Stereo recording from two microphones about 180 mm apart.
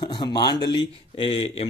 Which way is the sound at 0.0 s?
25° left (ahead or behind).